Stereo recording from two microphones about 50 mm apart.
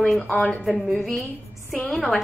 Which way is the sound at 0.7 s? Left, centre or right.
Centre.